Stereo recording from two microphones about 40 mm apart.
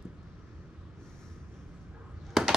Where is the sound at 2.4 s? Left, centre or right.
Centre.